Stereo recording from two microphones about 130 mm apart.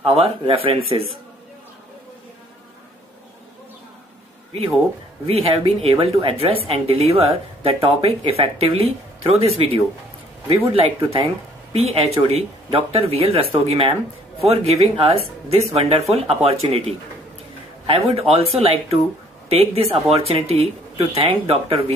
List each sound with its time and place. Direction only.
0.0 s a woman's voice: 50° right (ahead or behind)
5.2 s a woman's voice: 45° right (ahead or behind)
18.1 s a woman's voice: 50° right (ahead or behind)